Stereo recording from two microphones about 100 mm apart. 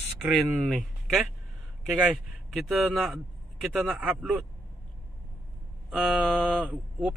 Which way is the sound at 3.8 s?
15° right (ahead or behind).